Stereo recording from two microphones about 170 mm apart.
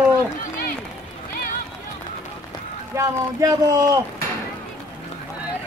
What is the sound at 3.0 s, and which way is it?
Speech, 20° right (ahead or behind).